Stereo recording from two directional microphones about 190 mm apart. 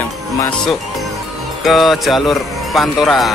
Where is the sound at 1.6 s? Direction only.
Centre (ahead or behind).